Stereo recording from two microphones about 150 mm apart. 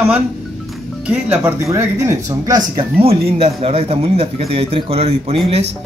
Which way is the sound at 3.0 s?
40° right (ahead or behind).